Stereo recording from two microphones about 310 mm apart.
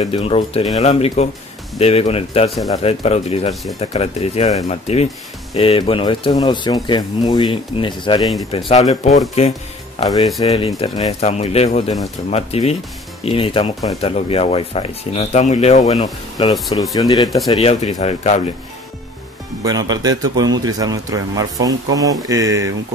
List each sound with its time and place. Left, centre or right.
0.0 s speech: centre
19.6 s a man's voice: centre